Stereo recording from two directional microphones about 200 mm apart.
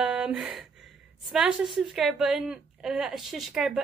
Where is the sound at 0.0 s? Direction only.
5° right (ahead or behind).